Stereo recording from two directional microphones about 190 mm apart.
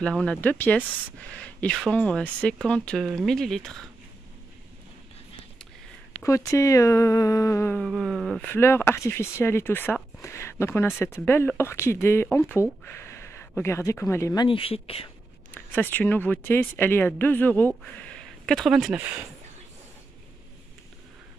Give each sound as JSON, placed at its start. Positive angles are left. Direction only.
{"t": 0.0, "sound": "speech", "side_deg": 5}
{"t": 6.2, "sound": "speech", "side_deg": 15}
{"t": 7.8, "sound": "speech", "side_deg": 0}
{"t": 15.5, "sound": "speech", "side_deg": 10}